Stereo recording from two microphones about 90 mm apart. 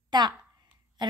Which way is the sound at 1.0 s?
55° right (ahead or behind).